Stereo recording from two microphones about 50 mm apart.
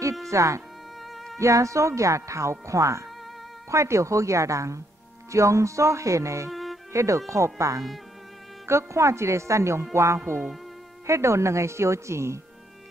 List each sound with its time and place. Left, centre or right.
0.3 s speech: right
1.1 s music: centre
1.4 s speech: right
6.5 s music: centre
6.9 s speech: right
8.6 s speech: right
9.9 s music: right
11.1 s speech: right